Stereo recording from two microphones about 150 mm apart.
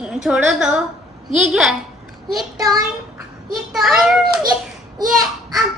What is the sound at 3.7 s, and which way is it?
Speech, centre (ahead or behind).